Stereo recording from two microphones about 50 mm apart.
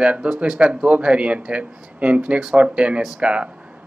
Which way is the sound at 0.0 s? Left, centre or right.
Right.